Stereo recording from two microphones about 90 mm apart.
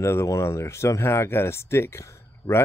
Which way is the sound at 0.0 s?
30° left (ahead or behind).